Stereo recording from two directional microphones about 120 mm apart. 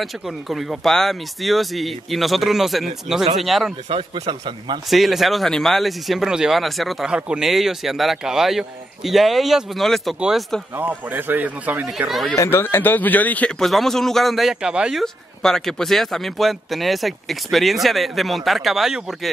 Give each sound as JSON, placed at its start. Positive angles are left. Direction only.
{"t": 0.0, "sound": "speech", "side_deg": 0}
{"t": 3.9, "sound": "speech", "side_deg": -45}
{"t": 4.8, "sound": "speech", "side_deg": 0}
{"t": 10.7, "sound": "speech", "side_deg": -15}
{"t": 11.9, "sound": "speech", "side_deg": 0}
{"t": 12.4, "sound": "speech", "side_deg": 20}